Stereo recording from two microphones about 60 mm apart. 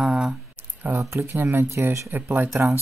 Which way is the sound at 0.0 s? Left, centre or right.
Centre.